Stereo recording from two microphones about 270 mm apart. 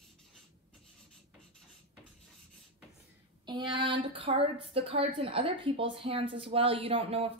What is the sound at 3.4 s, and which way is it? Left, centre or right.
A woman's voice, centre.